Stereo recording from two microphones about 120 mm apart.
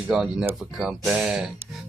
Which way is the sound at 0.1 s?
5° right (ahead or behind).